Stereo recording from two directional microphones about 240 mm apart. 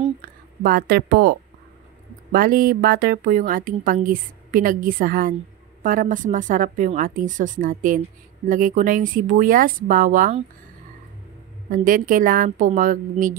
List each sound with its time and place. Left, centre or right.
0.2 s a woman's voice: right
2.3 s a woman's voice: right
11.7 s a woman's voice: right